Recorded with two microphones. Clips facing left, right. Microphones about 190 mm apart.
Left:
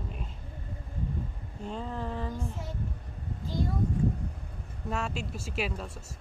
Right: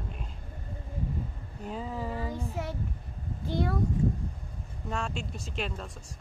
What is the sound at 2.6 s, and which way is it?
A child's voice, 70° right (ahead or behind).